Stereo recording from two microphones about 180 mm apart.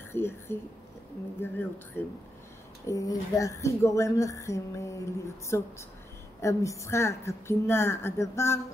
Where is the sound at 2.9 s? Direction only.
20° left (ahead or behind).